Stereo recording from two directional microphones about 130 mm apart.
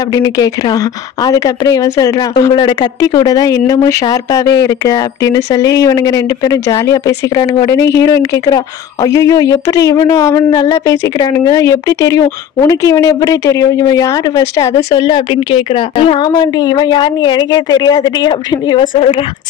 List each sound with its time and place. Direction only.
0.1 s a woman's voice: 30° left (ahead or behind)
14.7 s speech: 55° left (ahead or behind)
15.0 s speech: 35° left (ahead or behind)
18.9 s a woman's voice: 45° left (ahead or behind)